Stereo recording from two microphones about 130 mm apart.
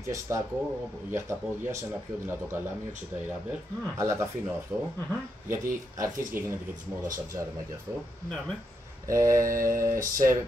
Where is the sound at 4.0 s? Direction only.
20° right (ahead or behind).